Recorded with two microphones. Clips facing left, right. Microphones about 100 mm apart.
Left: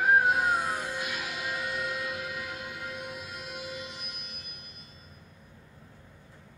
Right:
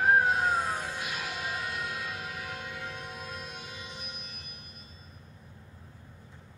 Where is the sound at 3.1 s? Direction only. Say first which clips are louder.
Left 1 dB; 35° right (ahead or behind).